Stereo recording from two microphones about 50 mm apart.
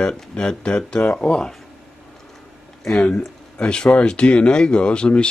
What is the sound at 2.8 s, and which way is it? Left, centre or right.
Speech, left.